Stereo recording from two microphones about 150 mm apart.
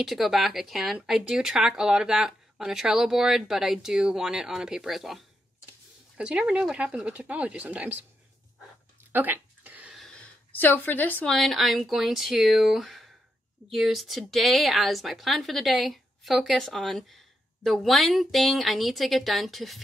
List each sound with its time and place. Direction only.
0.0 s speech: centre (ahead or behind)
9.1 s a sound: 10° right (ahead or behind)
9.9 s speech: 5° left (ahead or behind)